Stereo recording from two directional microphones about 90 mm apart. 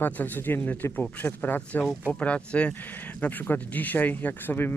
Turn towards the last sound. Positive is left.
turn(degrees=20)  # may be behind; listen again after turning